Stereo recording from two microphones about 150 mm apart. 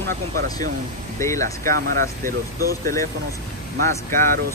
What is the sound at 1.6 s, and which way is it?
Speech, 75° right (ahead or behind).